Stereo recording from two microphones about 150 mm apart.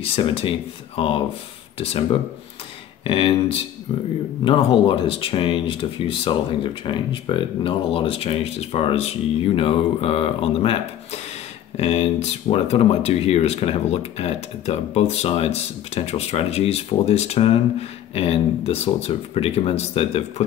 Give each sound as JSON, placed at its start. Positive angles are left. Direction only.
{"t": 0.0, "sound": "speech", "side_deg": 35}